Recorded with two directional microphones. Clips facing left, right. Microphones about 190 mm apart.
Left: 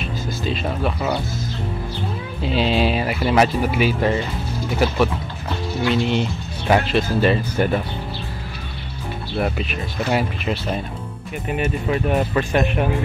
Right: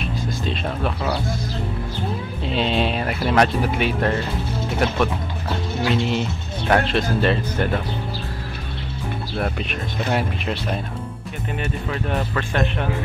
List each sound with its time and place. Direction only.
0.0 s speech: centre (ahead or behind)
2.4 s speech: centre (ahead or behind)
9.4 s speech: centre (ahead or behind)
11.4 s speech: 15° left (ahead or behind)